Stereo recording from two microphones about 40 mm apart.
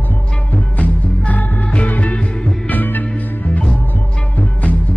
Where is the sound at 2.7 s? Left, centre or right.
Left.